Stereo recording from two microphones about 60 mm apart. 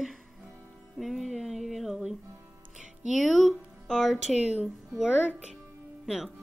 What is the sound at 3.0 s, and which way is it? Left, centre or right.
Speech, centre.